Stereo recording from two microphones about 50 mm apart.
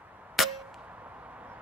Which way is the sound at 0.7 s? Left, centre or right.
Right.